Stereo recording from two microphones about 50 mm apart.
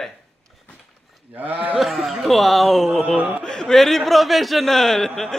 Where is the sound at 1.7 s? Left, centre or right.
Centre.